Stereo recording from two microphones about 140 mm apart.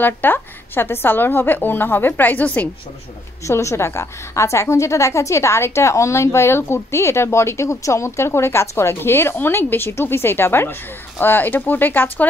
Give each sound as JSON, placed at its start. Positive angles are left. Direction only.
{"t": 0.0, "sound": "a woman's voice", "side_deg": 15}